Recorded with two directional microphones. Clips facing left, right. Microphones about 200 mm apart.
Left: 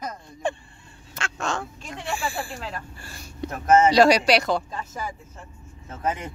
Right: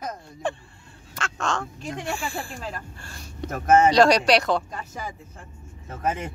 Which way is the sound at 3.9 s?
5° left (ahead or behind).